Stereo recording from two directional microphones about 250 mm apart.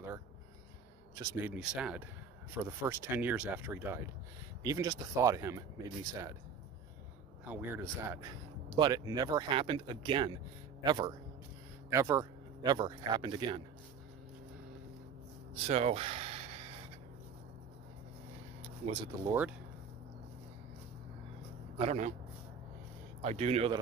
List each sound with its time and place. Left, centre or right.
1.1 s speech: centre
7.4 s speech: centre
15.5 s a sound: right
18.9 s speech: centre
21.7 s speech: right
23.2 s speech: right